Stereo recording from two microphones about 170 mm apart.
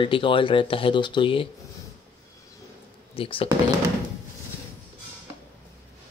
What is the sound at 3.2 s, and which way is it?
Speech, 30° left (ahead or behind).